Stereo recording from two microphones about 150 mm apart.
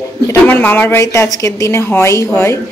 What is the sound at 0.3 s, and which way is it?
A woman's voice, 10° left (ahead or behind).